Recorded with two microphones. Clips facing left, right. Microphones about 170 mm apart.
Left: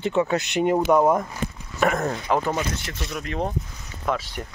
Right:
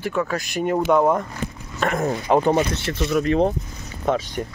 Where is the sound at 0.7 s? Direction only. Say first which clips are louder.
Right 2 dB; 10° left (ahead or behind).